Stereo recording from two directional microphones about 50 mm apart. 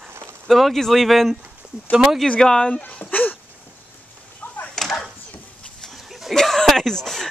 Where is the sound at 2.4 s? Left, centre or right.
Centre.